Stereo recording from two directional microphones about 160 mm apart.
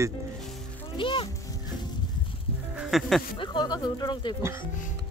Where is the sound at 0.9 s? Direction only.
30° left (ahead or behind).